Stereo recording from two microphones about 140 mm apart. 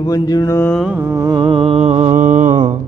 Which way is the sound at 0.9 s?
20° right (ahead or behind).